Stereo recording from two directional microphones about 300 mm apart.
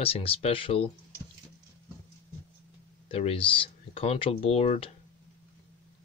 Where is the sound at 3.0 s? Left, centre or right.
Centre.